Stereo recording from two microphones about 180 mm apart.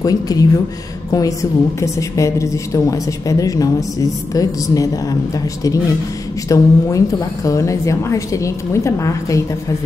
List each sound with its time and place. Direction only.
0.0 s a woman's voice: 20° left (ahead or behind)